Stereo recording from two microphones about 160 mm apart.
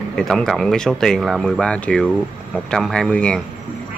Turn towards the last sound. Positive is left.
turn(degrees=5)  # may be behind; listen again after turning